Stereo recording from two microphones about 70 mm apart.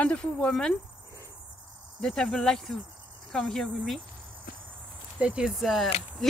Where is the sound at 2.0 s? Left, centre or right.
Centre.